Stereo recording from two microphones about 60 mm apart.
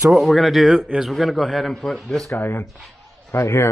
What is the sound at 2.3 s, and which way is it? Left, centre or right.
Speech, left.